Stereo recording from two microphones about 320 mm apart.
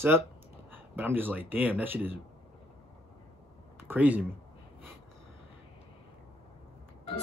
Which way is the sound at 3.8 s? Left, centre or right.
Centre.